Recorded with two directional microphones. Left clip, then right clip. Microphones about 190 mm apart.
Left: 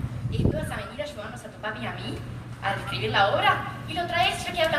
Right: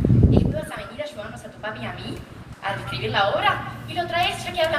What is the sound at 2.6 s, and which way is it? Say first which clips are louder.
A woman's voice: right 1 dB; 15° left (ahead or behind).